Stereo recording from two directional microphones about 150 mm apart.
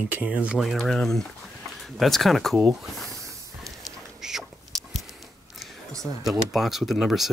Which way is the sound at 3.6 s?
Centre (ahead or behind).